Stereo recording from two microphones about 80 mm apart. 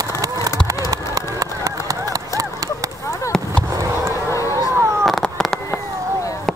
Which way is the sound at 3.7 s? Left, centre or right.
Right.